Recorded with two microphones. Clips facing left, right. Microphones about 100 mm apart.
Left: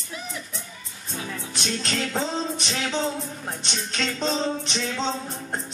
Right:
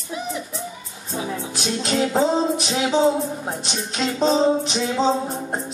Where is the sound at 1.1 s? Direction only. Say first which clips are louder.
Right 7 dB; 20° right (ahead or behind).